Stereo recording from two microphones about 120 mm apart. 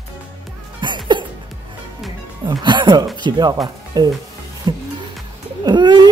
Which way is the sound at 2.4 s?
40° right (ahead or behind).